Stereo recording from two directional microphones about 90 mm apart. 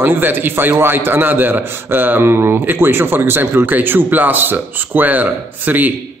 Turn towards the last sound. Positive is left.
turn(degrees=-20)  # may be behind; listen again after turning